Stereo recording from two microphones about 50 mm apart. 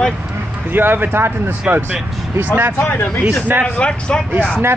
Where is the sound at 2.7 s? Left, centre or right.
Left.